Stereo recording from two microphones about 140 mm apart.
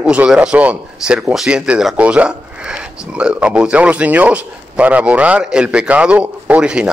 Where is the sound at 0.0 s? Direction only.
5° right (ahead or behind).